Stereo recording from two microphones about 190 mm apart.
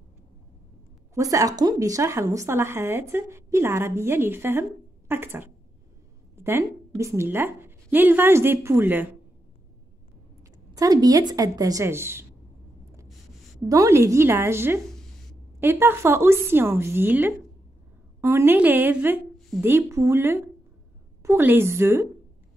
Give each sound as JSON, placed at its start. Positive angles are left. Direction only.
{"t": 1.1, "sound": "a woman's voice", "side_deg": -15}
{"t": 10.7, "sound": "a woman's voice", "side_deg": -20}
{"t": 13.7, "sound": "a woman's voice", "side_deg": -15}